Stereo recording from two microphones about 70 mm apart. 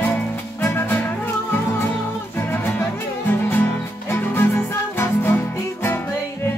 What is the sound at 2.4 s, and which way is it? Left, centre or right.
Music, left.